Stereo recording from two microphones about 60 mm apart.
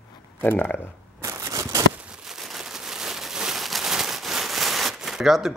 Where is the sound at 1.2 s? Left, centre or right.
Right.